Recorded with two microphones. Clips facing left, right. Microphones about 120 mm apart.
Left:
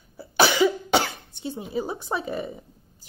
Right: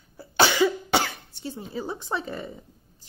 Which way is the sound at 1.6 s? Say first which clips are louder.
Left 4 dB; 10° left (ahead or behind).